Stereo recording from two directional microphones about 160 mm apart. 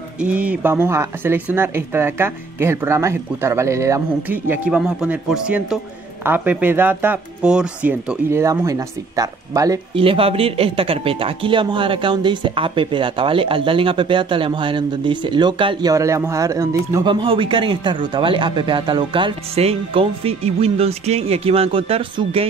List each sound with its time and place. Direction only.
0.2 s speech: 10° right (ahead or behind)
8.3 s speech: 20° right (ahead or behind)
9.9 s speech: 35° right (ahead or behind)
15.9 s speech: 20° right (ahead or behind)
17.1 s speech: 35° right (ahead or behind)